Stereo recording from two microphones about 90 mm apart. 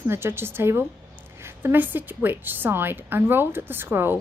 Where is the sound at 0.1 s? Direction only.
25° right (ahead or behind).